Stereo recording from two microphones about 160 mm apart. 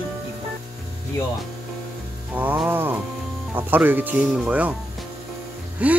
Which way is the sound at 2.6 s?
15° right (ahead or behind).